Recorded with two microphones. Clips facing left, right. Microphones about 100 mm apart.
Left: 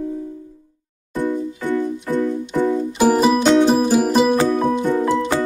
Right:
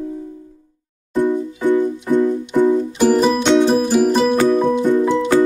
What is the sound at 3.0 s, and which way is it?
Music, 5° left (ahead or behind).